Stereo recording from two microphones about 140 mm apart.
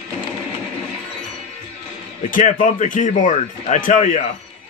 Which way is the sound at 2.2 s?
75° left (ahead or behind).